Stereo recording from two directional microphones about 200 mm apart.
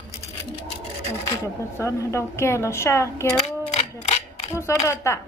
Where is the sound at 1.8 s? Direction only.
15° left (ahead or behind).